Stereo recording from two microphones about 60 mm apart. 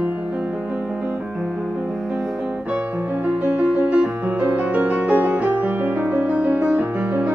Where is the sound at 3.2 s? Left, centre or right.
Right.